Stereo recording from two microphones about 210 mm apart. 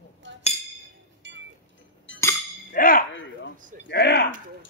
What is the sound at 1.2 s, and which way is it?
Chink, 60° right (ahead or behind).